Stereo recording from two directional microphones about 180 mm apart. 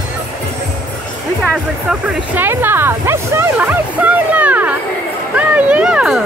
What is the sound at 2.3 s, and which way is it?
Speech, 10° right (ahead or behind).